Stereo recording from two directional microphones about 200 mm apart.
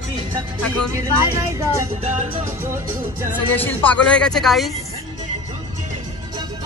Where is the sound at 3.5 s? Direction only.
10° left (ahead or behind).